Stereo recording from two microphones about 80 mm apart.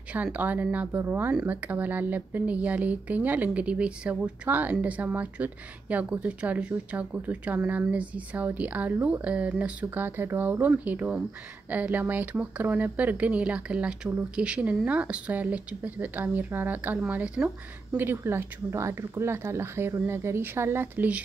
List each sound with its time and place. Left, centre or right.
0.1 s speech: centre
17.4 s speech: centre
17.9 s speech: right